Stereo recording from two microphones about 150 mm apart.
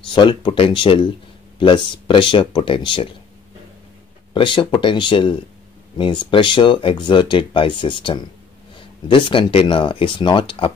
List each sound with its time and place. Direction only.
0.1 s speech: 30° left (ahead or behind)
4.3 s speech: 30° left (ahead or behind)